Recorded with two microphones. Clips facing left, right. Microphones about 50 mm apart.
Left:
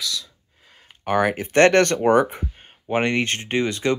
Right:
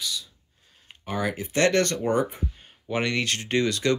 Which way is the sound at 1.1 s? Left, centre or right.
Left.